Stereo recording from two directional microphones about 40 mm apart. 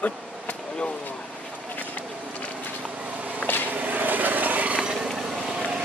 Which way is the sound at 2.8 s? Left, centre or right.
Right.